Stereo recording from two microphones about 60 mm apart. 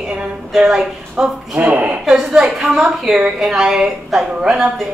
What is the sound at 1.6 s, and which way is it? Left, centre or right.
Speech, right.